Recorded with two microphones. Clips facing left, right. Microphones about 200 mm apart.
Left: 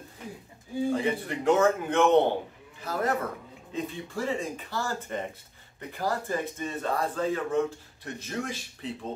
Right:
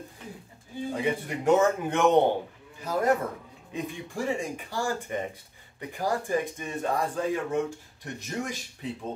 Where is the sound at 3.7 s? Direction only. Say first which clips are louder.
Left 1 dB; 15° right (ahead or behind).